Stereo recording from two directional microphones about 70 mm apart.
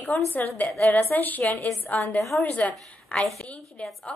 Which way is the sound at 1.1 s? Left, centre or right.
Left.